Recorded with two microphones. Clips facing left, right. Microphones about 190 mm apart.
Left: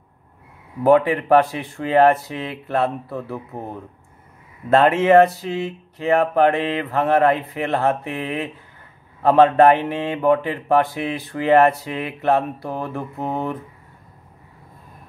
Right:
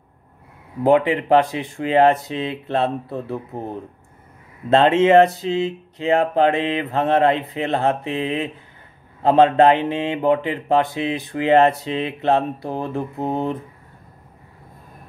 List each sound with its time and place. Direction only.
0.8 s speech: 20° right (ahead or behind)
4.6 s speech: 25° right (ahead or behind)